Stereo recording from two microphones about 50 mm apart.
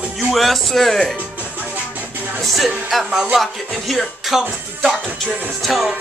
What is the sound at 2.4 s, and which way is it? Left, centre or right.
Speech, centre.